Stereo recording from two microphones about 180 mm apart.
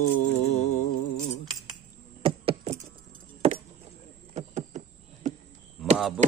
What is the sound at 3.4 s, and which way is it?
Chop, 35° right (ahead or behind).